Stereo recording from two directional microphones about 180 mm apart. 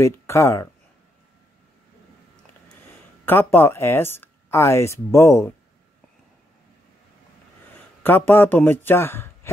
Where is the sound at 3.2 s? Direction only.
10° left (ahead or behind).